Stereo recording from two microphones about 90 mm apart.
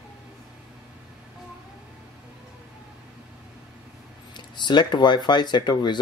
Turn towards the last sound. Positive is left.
turn(degrees=55)  # may be behind; listen again after turning